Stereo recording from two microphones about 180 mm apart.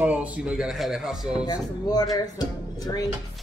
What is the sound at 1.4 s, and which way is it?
Speech, 20° left (ahead or behind).